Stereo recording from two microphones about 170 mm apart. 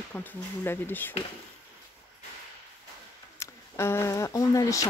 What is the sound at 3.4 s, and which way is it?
Speech, 15° left (ahead or behind).